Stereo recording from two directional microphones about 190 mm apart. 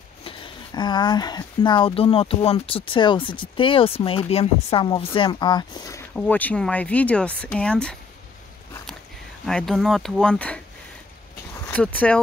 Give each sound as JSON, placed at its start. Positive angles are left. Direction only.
{"t": 0.2, "sound": "speech", "side_deg": 25}
{"t": 6.1, "sound": "speech", "side_deg": 10}
{"t": 9.5, "sound": "speech", "side_deg": 0}
{"t": 11.6, "sound": "speech", "side_deg": 10}